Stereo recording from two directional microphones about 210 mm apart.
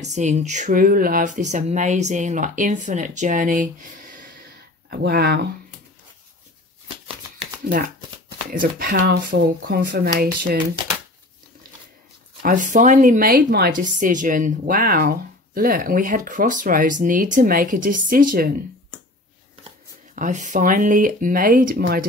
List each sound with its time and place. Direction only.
0.0 s a woman's voice: 35° right (ahead or behind)
4.8 s speech: 50° right (ahead or behind)
8.5 s speech: 45° right (ahead or behind)
12.4 s a woman's voice: 40° right (ahead or behind)
20.2 s a woman's voice: 35° right (ahead or behind)